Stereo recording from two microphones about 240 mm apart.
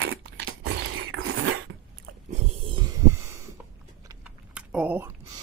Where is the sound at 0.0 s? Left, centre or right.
Right.